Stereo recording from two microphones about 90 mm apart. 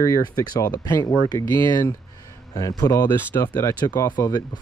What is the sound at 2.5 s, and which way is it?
Speech, 45° left (ahead or behind).